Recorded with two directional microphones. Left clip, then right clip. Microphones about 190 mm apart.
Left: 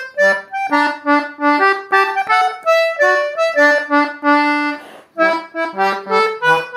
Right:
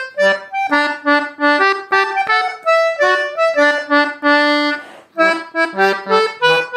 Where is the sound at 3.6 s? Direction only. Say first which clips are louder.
Left 2 dB; 20° right (ahead or behind).